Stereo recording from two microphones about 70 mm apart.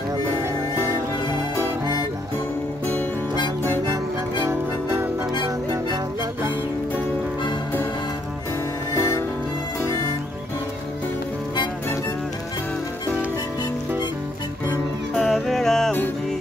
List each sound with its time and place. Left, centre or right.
8.9 s music: left
15.1 s music: centre